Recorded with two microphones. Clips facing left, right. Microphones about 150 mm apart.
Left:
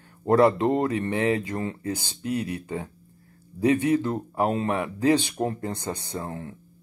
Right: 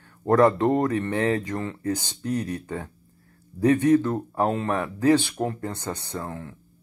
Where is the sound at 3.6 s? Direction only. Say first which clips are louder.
Right 3 dB; 10° left (ahead or behind).